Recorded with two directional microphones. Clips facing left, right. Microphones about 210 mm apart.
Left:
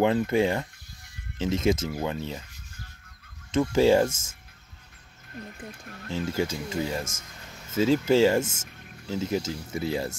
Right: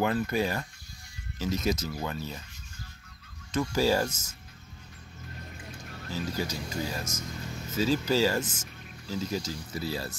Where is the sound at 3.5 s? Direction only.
25° left (ahead or behind).